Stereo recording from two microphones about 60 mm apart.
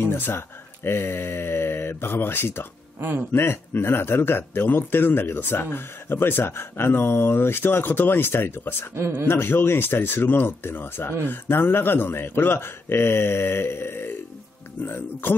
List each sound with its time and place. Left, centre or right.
0.0 s a sound: left
0.8 s speech: left
3.0 s speech: right
3.3 s speech: left
8.9 s speech: right
9.3 s speech: left